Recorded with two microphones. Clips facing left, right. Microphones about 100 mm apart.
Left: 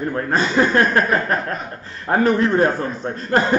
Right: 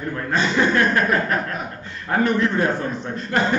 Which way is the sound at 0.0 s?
40° left (ahead or behind).